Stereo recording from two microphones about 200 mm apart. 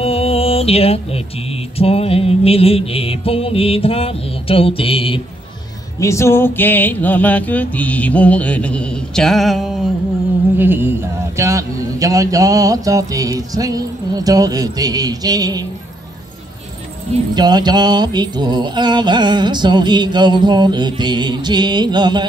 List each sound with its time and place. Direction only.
0.0 s mantra: 30° left (ahead or behind)
5.9 s a sound: 15° left (ahead or behind)
10.6 s a man's voice: 10° right (ahead or behind)
17.3 s mantra: 20° right (ahead or behind)